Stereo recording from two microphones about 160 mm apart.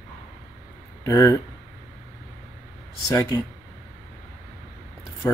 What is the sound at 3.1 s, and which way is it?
Speech, 20° left (ahead or behind).